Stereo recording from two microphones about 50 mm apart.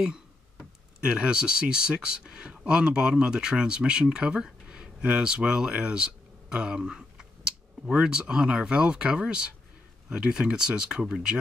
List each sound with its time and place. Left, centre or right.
1.0 s speech: centre